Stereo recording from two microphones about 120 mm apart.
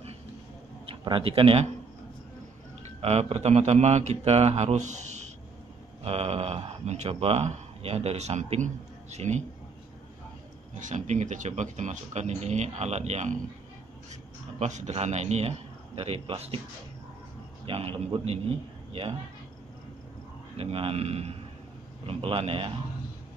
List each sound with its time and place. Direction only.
0.8 s a man's voice: 45° right (ahead or behind)
3.0 s speech: 60° right (ahead or behind); by 5.3 s 75° right (ahead or behind)
6.0 s speech: 55° right (ahead or behind)
10.7 s speech: 90° right; by 13.4 s 70° right (ahead or behind)
14.6 s speech: 75° right (ahead or behind); by 16.5 s 55° right (ahead or behind)
17.6 s a man's voice: 50° right (ahead or behind)
20.5 s a man's voice: 55° right (ahead or behind)